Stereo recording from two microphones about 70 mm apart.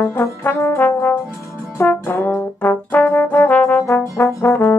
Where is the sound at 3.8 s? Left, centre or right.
Left.